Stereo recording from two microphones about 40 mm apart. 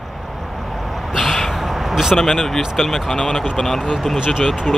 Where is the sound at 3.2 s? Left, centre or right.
Centre.